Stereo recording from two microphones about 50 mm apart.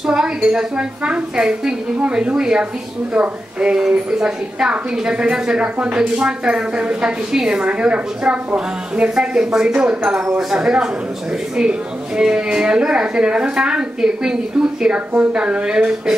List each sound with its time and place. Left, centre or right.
0.0 s a woman's voice: centre
12.2 s a woman's voice: centre